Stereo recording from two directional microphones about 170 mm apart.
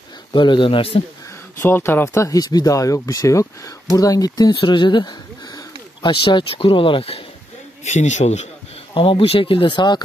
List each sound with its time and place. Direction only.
0.3 s speech: 30° left (ahead or behind)
1.6 s speech: 15° left (ahead or behind); by 7.2 s 35° left (ahead or behind)
7.8 s a man's voice: 45° left (ahead or behind)
8.9 s speech: 30° left (ahead or behind)